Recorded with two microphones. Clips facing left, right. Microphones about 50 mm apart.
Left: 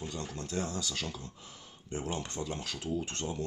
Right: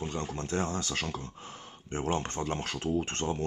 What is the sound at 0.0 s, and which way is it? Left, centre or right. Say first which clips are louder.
Speech: right 5 dB; right.